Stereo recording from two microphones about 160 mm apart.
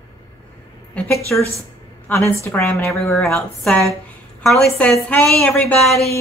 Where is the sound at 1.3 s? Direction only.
10° left (ahead or behind).